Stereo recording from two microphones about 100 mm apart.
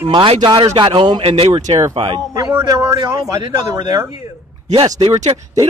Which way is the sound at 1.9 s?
60° right (ahead or behind).